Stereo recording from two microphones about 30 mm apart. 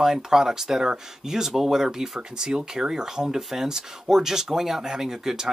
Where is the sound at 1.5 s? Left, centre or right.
Centre.